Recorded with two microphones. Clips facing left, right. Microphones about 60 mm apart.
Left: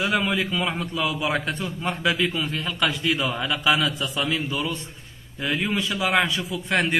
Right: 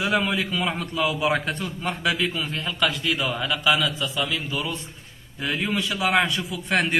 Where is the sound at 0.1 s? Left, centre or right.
Centre.